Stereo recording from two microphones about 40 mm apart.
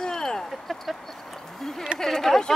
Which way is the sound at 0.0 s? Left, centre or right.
Centre.